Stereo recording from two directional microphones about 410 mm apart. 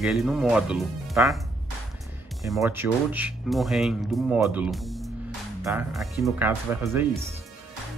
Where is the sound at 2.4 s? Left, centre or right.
Centre.